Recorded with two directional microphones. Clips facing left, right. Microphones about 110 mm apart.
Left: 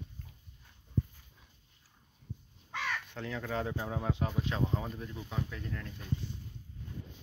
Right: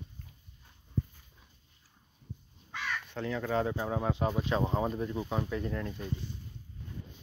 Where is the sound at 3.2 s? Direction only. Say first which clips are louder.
Right 6 dB; centre (ahead or behind).